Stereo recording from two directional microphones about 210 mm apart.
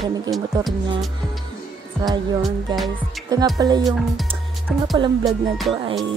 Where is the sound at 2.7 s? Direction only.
20° right (ahead or behind).